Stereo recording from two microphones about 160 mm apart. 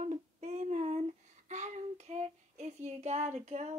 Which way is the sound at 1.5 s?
45° right (ahead or behind).